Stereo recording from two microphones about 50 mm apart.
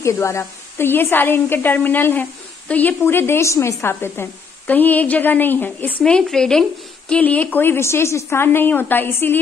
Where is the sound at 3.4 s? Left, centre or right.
Left.